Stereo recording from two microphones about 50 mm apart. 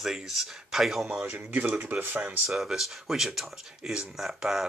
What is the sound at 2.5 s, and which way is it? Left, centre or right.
Speech, centre.